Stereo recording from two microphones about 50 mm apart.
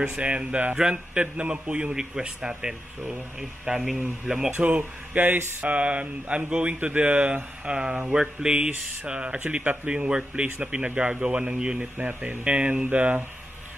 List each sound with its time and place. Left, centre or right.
0.0 s a man's voice: right
4.6 s speech: right
5.6 s speech: right
7.6 s speech: centre
9.8 s speech: centre
12.0 s speech: right